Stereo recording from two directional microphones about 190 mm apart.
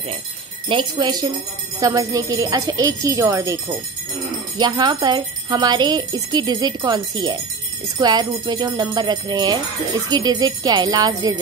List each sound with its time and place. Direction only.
0.7 s speech: 25° right (ahead or behind)
4.6 s speech: 20° right (ahead or behind)